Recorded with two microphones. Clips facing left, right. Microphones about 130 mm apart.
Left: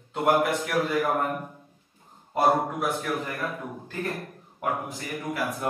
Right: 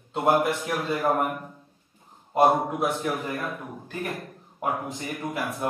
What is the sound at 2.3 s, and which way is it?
A man's voice, 20° right (ahead or behind).